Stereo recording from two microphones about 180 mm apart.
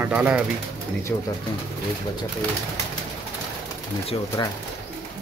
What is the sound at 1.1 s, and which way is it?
Speech, 10° left (ahead or behind).